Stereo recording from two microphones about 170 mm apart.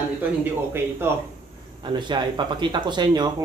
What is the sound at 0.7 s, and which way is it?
Speech, 15° right (ahead or behind).